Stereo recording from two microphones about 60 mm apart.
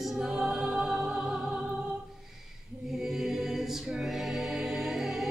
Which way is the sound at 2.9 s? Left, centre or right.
Centre.